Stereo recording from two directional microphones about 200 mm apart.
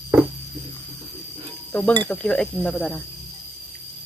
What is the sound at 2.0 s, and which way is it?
Speech, 5° left (ahead or behind).